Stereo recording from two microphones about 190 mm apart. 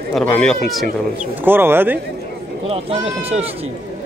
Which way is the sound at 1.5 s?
10° right (ahead or behind).